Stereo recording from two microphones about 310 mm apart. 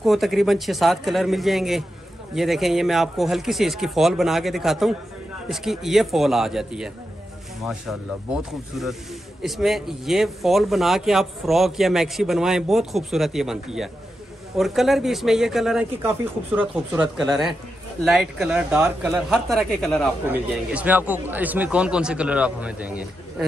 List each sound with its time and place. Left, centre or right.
0.0 s speech: centre